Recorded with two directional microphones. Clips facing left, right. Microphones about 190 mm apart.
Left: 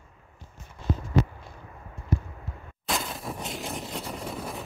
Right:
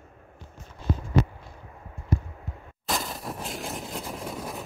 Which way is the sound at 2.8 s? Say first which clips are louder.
Even; centre (ahead or behind).